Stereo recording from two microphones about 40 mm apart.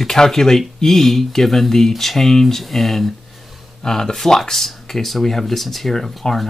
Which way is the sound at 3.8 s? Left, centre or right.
Centre.